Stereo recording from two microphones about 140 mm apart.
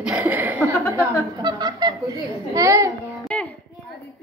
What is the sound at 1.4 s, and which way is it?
Fowl, 30° right (ahead or behind).